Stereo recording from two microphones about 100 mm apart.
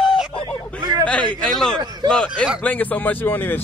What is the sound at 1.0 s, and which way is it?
Speech, 10° left (ahead or behind).